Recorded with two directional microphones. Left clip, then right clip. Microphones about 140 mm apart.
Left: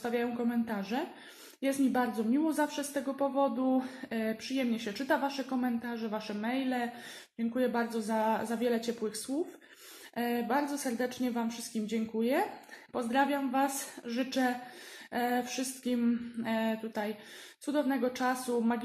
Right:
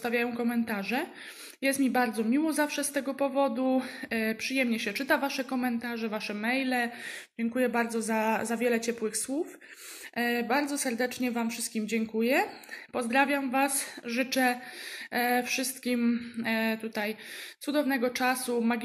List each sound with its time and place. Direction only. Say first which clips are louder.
0.0 s speech: right 3 dB; 15° right (ahead or behind)
10.1 s speech: right 3 dB; 15° right (ahead or behind)